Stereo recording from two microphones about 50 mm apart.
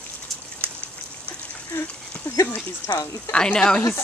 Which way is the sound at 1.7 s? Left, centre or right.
Left.